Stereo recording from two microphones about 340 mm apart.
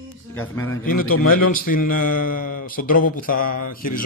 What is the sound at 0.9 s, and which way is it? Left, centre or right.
A man's voice, left.